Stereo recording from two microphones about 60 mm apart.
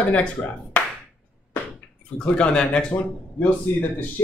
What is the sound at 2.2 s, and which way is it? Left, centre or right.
Speech, centre.